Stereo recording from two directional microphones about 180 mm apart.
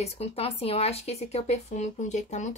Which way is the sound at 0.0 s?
35° left (ahead or behind).